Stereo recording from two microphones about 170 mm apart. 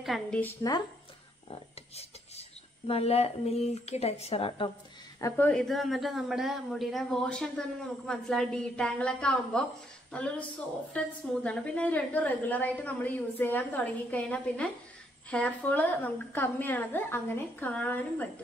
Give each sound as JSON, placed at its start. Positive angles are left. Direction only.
{"t": 0.0, "sound": "a man's voice", "side_deg": 0}
{"t": 0.6, "sound": "speech", "side_deg": 20}
{"t": 2.9, "sound": "a woman's voice", "side_deg": 35}
{"t": 5.3, "sound": "a man's voice", "side_deg": 5}
{"t": 10.9, "sound": "a woman's voice", "side_deg": 5}